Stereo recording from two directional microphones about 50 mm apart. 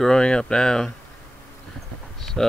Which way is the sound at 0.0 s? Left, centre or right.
Centre.